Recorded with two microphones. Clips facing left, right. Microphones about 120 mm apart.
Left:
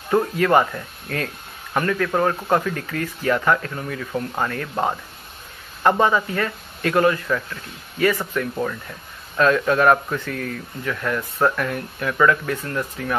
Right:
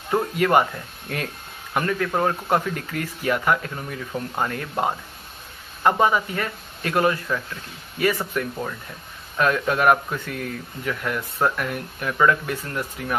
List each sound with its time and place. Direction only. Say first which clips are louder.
0.1 s speech: left 2 dB; 15° right (ahead or behind)
5.9 s speech: left 1 dB; 15° right (ahead or behind)